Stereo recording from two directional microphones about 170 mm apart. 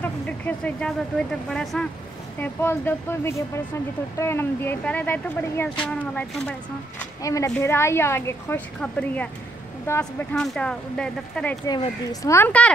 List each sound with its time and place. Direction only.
0.0 s speech: 10° left (ahead or behind)
7.2 s speech: 20° left (ahead or behind)
10.3 s speech: 5° left (ahead or behind)
11.6 s speech: 25° left (ahead or behind)